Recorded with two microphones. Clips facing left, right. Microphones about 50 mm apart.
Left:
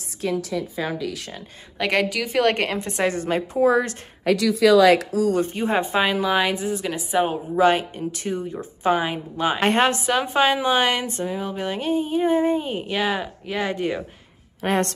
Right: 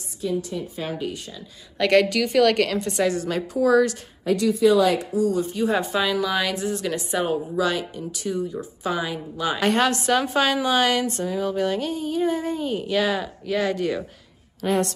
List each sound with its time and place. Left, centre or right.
0.2 s a woman's voice: left
1.8 s a woman's voice: centre
2.4 s speech: left
4.2 s speech: left
5.3 s a woman's voice: left
6.7 s a woman's voice: centre
7.5 s a woman's voice: left
9.9 s speech: centre
14.6 s a woman's voice: left